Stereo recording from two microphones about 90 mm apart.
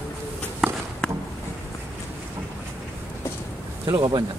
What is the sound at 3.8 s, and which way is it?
Speech, 50° right (ahead or behind).